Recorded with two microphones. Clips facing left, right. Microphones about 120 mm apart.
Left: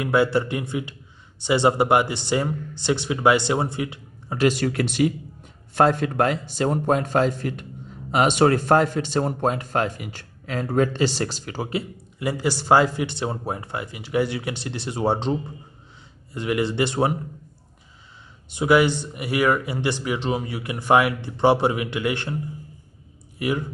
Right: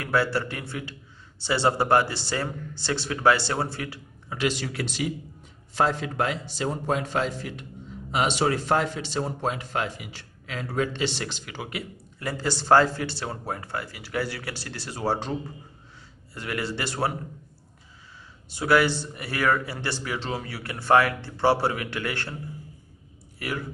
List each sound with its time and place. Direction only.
0.0 s speech: 20° left (ahead or behind)
4.3 s speech: 45° left (ahead or behind)
12.2 s speech: 15° left (ahead or behind)
16.3 s speech: 20° left (ahead or behind)
18.5 s speech: 15° left (ahead or behind)
23.4 s speech: 15° left (ahead or behind)